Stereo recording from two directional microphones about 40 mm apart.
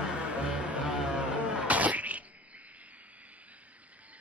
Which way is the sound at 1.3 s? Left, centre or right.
Right.